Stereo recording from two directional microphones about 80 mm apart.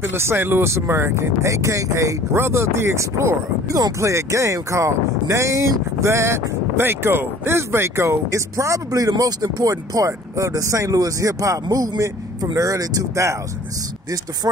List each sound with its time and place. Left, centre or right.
0.1 s speech: right